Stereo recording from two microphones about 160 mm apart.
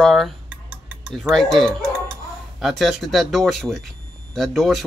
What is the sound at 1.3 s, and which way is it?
Speech, centre (ahead or behind).